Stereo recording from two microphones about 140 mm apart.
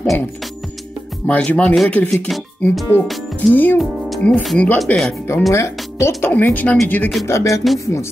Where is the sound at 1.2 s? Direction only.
10° left (ahead or behind).